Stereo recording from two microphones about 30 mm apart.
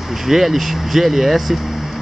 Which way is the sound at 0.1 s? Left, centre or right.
Centre.